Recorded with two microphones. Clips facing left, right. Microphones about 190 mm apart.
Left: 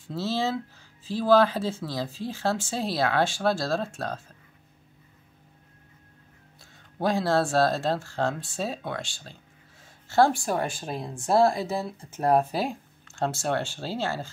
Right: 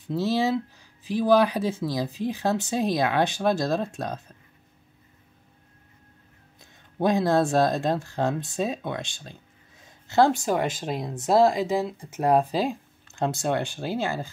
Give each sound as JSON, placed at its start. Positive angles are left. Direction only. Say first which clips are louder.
{"t": 0.0, "sound": "speech", "louder": "right 4 dB", "side_deg": -15}
{"t": 6.6, "sound": "speech", "louder": "right 3 dB", "side_deg": -20}